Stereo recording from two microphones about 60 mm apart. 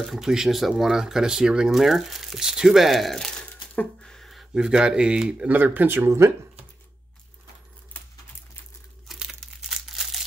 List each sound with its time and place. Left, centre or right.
0.0 s speech: centre
4.0 s a sound: centre
4.6 s speech: centre
5.5 s speech: right
6.0 s speech: right
9.0 s crumpling: centre